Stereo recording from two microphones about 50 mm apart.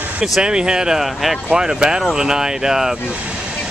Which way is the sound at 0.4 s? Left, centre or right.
Centre.